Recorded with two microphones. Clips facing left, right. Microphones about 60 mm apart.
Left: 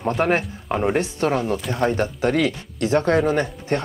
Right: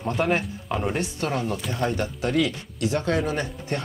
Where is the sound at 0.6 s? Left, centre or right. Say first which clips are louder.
Left 8 dB; left.